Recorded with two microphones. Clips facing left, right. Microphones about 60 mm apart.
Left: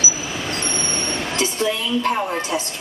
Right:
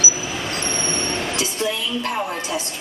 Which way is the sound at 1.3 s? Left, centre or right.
Left.